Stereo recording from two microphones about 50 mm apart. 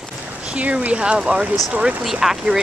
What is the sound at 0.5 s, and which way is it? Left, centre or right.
Speech, right.